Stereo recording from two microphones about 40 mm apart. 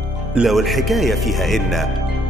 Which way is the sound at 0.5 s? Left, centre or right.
Centre.